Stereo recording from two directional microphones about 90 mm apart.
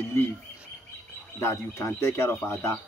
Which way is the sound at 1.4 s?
30° left (ahead or behind).